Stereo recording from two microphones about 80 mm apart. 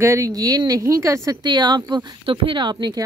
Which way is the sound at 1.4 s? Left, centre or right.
Right.